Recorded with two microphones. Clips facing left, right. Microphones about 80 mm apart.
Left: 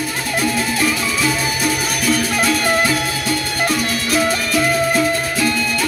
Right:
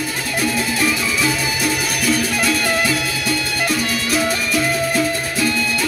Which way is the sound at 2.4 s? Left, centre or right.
Left.